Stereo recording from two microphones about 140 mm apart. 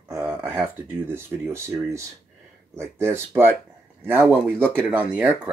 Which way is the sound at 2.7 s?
20° right (ahead or behind).